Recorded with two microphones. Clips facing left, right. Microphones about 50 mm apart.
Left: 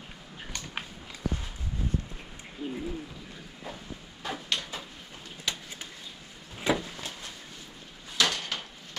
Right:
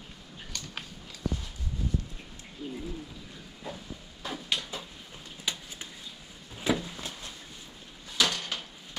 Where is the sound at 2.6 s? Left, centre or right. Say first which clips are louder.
Left 3 dB; left.